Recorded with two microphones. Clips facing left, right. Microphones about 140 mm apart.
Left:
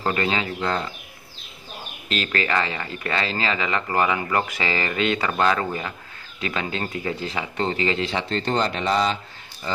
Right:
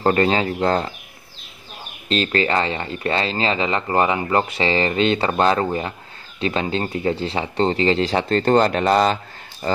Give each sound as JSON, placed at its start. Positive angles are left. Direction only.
{"t": 0.0, "sound": "speech", "side_deg": -40}
{"t": 2.0, "sound": "speech", "side_deg": -30}